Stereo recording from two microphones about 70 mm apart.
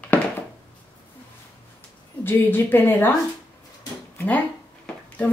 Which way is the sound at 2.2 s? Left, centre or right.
Left.